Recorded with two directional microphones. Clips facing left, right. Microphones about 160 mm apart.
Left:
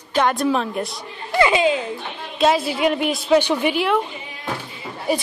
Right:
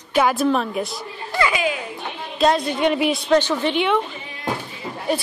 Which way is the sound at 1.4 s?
25° left (ahead or behind).